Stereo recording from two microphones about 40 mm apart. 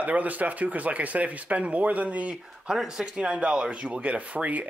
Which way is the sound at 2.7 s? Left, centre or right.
Centre.